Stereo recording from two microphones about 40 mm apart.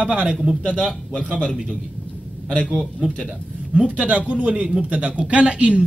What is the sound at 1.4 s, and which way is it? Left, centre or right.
Speech, centre.